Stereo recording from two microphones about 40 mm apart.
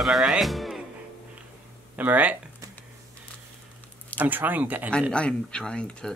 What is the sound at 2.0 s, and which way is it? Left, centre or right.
Speech, right.